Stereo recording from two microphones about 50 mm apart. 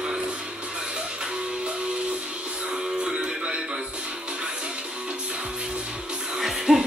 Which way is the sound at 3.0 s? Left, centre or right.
Right.